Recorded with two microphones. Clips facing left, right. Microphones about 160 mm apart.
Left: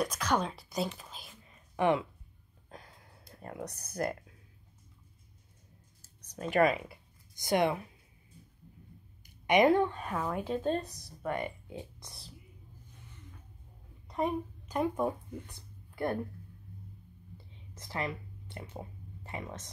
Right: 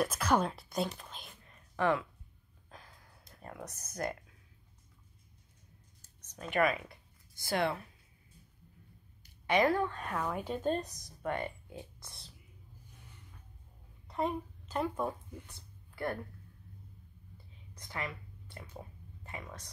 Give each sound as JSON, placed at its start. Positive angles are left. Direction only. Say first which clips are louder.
{"t": 0.0, "sound": "speech", "louder": "right 1 dB", "side_deg": -5}
{"t": 0.9, "sound": "whispering", "louder": "even", "side_deg": 0}
{"t": 1.8, "sound": "speech", "louder": "left 3 dB", "side_deg": 20}
{"t": 2.7, "sound": "a sound", "louder": "left 4 dB", "side_deg": 35}
{"t": 3.8, "sound": "speech", "louder": "left 3 dB", "side_deg": 30}
{"t": 6.4, "sound": "speech", "louder": "left 4 dB", "side_deg": 30}
{"t": 7.3, "sound": "speech", "louder": "left 4 dB", "side_deg": 15}
{"t": 9.2, "sound": "a sound", "louder": "left 4 dB", "side_deg": 20}
{"t": 9.9, "sound": "speech", "louder": "left 2 dB", "side_deg": 5}
{"t": 11.3, "sound": "speech", "louder": "left 2 dB", "side_deg": 15}
{"t": 14.1, "sound": "speech", "louder": "left 2 dB", "side_deg": 15}
{"t": 17.7, "sound": "speech", "louder": "left 5 dB", "side_deg": 25}